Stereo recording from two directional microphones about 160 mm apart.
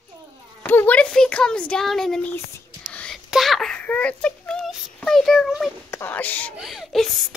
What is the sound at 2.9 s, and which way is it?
Whispering, 5° left (ahead or behind).